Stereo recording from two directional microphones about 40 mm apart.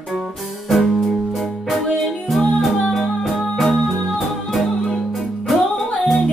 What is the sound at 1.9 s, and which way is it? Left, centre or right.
Music, centre.